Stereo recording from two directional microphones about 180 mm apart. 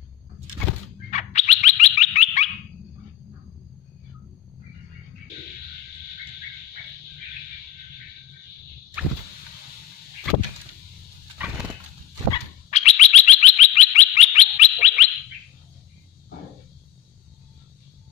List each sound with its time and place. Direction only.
1.1 s bird: 40° left (ahead or behind)
12.6 s bird: 40° left (ahead or behind)